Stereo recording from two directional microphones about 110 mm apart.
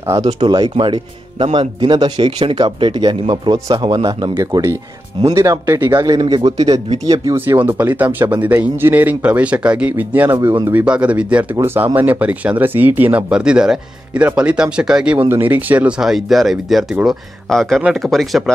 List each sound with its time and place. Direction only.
0.0 s speech: 30° right (ahead or behind)
0.5 s speech: 45° right (ahead or behind)
2.6 s speech: 40° right (ahead or behind)
3.5 s speech: 30° right (ahead or behind)
6.1 s speech: 45° right (ahead or behind)
7.3 s speech: 20° right (ahead or behind)
15.2 s speech: 20° right (ahead or behind)
16.0 s speech: centre (ahead or behind)